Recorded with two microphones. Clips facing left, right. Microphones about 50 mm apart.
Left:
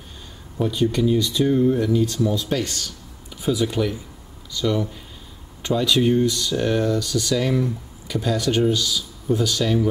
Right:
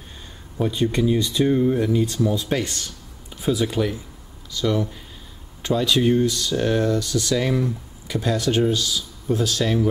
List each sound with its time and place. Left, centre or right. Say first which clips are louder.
0.6 s speech: left 1 dB; centre